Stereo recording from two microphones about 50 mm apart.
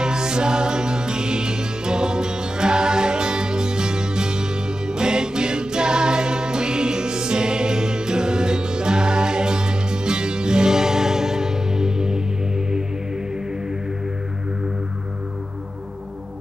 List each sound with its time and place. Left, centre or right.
0.0 s music: centre